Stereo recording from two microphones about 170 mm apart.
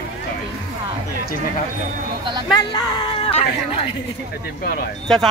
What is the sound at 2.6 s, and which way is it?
Speech, 25° left (ahead or behind).